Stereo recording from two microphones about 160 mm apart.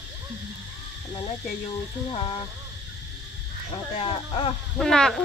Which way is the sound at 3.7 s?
35° left (ahead or behind).